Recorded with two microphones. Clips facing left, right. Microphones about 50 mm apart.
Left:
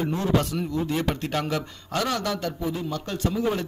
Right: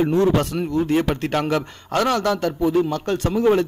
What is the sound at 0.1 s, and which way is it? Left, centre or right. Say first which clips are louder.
A man's voice: right 6 dB; right.